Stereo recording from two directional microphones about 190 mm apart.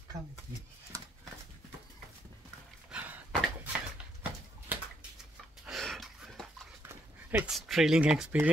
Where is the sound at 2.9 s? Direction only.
10° right (ahead or behind).